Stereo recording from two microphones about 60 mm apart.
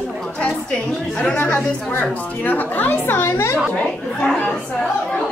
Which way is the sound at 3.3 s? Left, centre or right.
Left.